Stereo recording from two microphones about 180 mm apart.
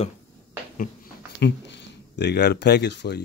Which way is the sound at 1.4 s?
75° left (ahead or behind).